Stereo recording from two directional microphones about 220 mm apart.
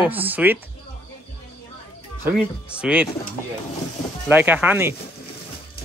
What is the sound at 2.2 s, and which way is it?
Speech, 5° right (ahead or behind).